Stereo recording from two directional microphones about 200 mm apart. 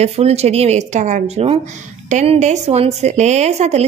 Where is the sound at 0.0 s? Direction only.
30° right (ahead or behind).